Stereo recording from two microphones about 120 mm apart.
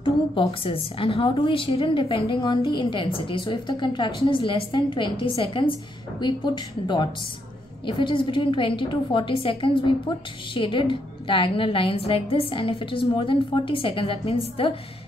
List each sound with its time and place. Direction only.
0.0 s a woman's voice: 45° left (ahead or behind)